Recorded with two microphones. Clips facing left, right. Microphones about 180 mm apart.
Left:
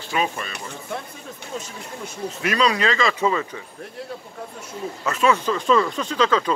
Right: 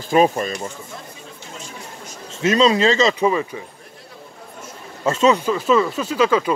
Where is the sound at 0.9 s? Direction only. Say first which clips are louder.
Left 6 dB; 65° left (ahead or behind).